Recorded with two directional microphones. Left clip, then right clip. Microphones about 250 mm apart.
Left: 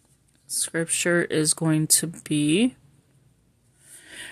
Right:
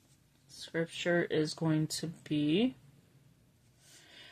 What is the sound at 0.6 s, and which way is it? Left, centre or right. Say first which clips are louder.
Speech: left 9 dB; left.